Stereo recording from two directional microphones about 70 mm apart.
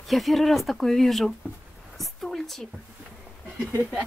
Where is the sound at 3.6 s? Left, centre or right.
Right.